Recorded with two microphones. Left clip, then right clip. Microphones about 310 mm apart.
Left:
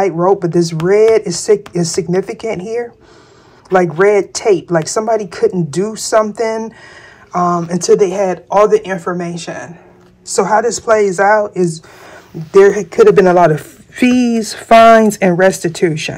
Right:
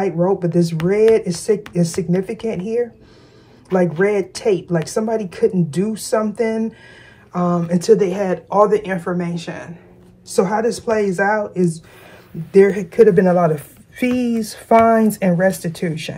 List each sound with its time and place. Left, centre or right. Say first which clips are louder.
0.2 s speech: left 5 dB; centre
10.3 s speech: left 5 dB; left